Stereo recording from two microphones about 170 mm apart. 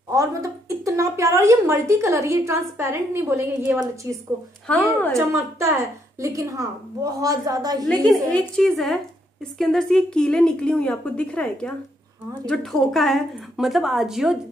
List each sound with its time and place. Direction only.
0.1 s a woman's voice: 20° right (ahead or behind)
4.6 s a woman's voice: 10° left (ahead or behind)
5.1 s a woman's voice: 15° right (ahead or behind)
7.8 s a woman's voice: centre (ahead or behind)